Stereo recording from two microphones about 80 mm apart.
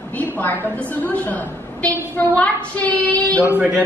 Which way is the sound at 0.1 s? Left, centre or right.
Left.